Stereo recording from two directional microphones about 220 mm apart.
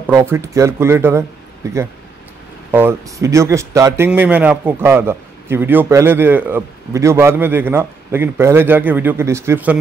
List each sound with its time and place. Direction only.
0.0 s a man's voice: 10° right (ahead or behind)